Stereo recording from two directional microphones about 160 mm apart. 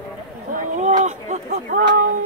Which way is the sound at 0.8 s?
50° right (ahead or behind).